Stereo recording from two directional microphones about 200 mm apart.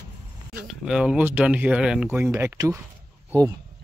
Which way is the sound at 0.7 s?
5° right (ahead or behind).